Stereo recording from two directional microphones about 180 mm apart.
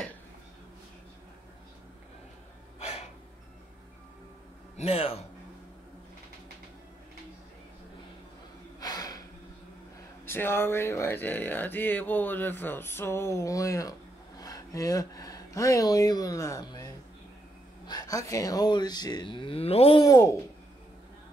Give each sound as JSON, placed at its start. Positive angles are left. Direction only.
{"t": 2.8, "sound": "a sound", "side_deg": 35}
{"t": 4.7, "sound": "a man's voice", "side_deg": 35}
{"t": 8.7, "sound": "gasp", "side_deg": 20}
{"t": 10.2, "sound": "speech", "side_deg": 10}
{"t": 20.0, "sound": "speech", "side_deg": 15}